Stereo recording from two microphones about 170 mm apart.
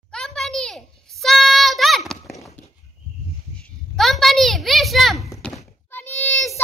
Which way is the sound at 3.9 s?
Centre (ahead or behind).